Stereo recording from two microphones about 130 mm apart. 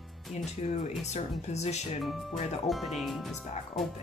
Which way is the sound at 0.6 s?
60° left (ahead or behind).